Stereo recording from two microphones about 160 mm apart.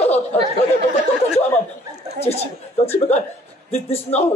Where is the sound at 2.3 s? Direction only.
40° left (ahead or behind).